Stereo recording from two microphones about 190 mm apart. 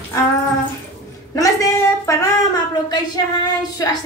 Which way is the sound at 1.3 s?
15° left (ahead or behind).